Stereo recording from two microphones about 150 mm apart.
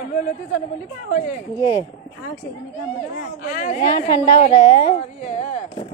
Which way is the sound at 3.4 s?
60° left (ahead or behind).